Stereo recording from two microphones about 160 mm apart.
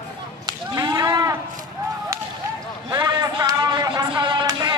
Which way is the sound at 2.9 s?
25° right (ahead or behind).